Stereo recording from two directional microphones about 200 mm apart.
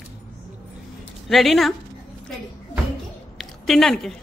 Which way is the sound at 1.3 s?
Centre (ahead or behind).